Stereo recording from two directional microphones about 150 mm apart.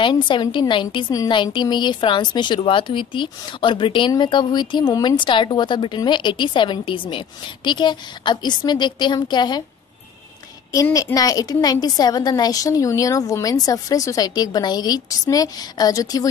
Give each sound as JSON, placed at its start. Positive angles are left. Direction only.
{"t": 0.0, "sound": "a woman's voice", "side_deg": 30}
{"t": 10.7, "sound": "a woman's voice", "side_deg": 25}